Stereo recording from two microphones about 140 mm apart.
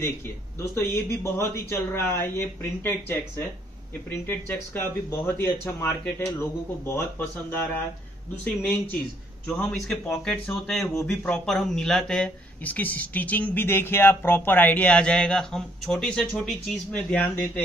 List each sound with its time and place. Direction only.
0.6 s speech: 20° left (ahead or behind)
9.5 s speech: 10° left (ahead or behind)